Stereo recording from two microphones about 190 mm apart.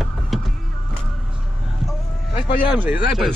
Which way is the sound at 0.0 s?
Centre (ahead or behind).